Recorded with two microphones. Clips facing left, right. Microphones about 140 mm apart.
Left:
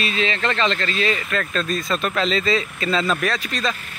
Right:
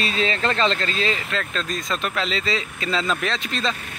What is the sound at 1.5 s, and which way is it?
Speech, 15° right (ahead or behind).